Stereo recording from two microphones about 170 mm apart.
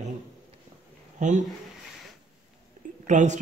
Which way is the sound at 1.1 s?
45° right (ahead or behind).